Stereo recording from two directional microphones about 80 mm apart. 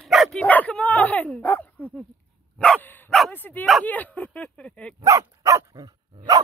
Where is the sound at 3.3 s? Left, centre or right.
Left.